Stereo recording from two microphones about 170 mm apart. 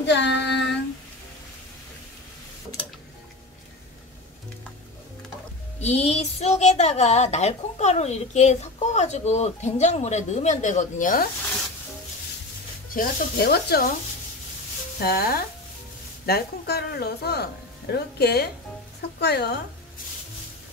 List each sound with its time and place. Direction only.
0.0 s child singing: 90° left
5.8 s a woman's voice: 40° left (ahead or behind)
12.9 s speech: 60° left (ahead or behind)
15.0 s a woman's voice: 65° left (ahead or behind)